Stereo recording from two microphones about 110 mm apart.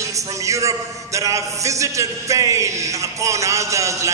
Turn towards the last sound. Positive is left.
turn(degrees=-30)  # may be behind; listen again after turning